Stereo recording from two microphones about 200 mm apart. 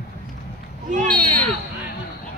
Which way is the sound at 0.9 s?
35° right (ahead or behind).